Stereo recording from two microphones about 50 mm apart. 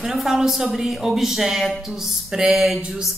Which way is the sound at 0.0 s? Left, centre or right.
Centre.